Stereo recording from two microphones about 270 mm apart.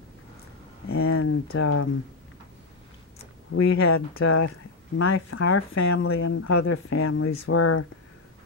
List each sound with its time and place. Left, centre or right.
0.8 s speech: left
3.5 s speech: left
4.2 s speech: left
4.9 s speech: left